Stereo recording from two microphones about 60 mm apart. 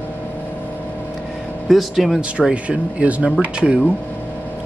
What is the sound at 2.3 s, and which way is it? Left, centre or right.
Speech, centre.